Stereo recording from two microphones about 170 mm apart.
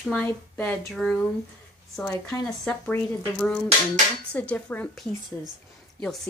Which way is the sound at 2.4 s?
5° left (ahead or behind).